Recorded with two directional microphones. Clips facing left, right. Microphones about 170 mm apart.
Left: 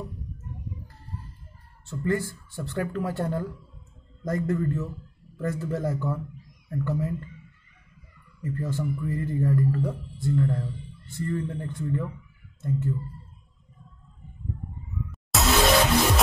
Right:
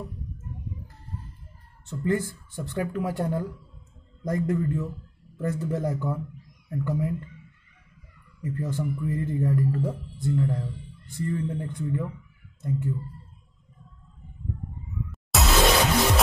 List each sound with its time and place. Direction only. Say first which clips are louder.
1.9 s a man's voice: right 1 dB; 20° right (ahead or behind)
8.4 s a man's voice: even; 15° right (ahead or behind)
15.0 s music: left 1 dB; centre (ahead or behind)